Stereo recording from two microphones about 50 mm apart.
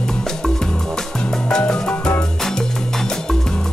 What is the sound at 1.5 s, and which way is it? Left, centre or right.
Music, centre.